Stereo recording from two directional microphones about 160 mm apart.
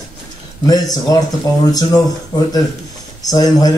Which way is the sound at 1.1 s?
20° left (ahead or behind).